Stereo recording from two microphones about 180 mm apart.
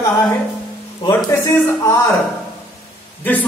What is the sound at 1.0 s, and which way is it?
Speech, 20° left (ahead or behind).